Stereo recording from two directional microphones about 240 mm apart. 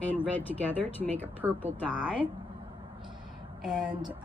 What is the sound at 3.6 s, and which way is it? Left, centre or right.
Speech, centre.